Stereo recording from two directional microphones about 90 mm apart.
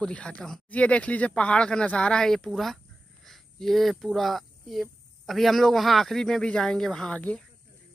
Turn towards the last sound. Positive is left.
turn(degrees=5)  # may be behind; listen again after turning